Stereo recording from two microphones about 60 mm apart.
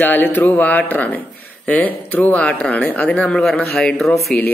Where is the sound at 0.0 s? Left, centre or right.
Left.